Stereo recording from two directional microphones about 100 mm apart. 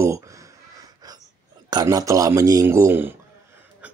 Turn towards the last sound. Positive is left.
turn(degrees=-25)  # may be behind; listen again after turning